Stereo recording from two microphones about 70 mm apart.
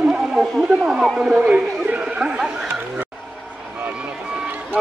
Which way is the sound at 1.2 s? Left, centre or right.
Centre.